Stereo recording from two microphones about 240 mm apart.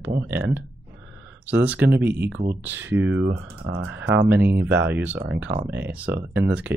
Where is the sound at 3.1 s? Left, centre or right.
Right.